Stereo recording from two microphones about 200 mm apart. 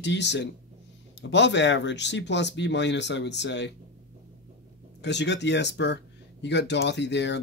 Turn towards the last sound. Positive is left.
turn(degrees=60)  # may be behind; listen again after turning